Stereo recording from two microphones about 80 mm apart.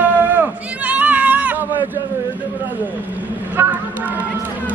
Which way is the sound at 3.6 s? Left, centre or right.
Right.